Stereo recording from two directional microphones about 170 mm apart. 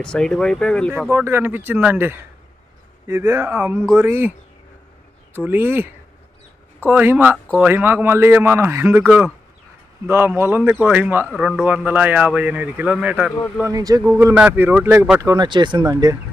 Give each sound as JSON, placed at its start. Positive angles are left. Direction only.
{"t": 0.0, "sound": "speech", "side_deg": 5}
{"t": 1.1, "sound": "speech", "side_deg": -15}
{"t": 5.3, "sound": "speech", "side_deg": -10}
{"t": 6.9, "sound": "speech", "side_deg": -10}
{"t": 10.0, "sound": "speech", "side_deg": -15}
{"t": 11.2, "sound": "speech", "side_deg": 0}
{"t": 11.6, "sound": "speech", "side_deg": -10}
{"t": 13.7, "sound": "speech", "side_deg": -20}
{"t": 14.3, "sound": "speech", "side_deg": -10}
{"t": 15.3, "sound": "speech", "side_deg": -25}